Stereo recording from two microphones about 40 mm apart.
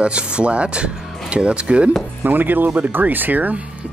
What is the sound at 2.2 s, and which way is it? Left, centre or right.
Speech, right.